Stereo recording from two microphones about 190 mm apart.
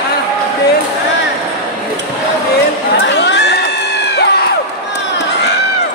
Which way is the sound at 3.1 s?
65° left (ahead or behind).